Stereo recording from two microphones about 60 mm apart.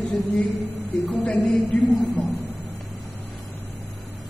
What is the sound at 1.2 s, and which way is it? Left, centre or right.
A woman's voice, left.